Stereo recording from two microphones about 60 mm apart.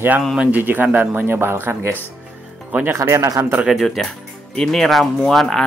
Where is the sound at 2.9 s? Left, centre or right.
Right.